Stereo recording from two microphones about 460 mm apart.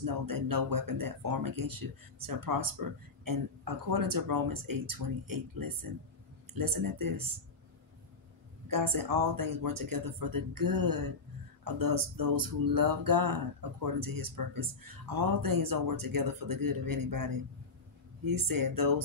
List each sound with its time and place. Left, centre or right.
0.0 s speech: right
8.6 s speech: right